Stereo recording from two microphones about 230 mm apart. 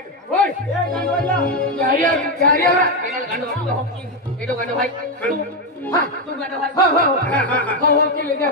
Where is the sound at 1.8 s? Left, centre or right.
Right.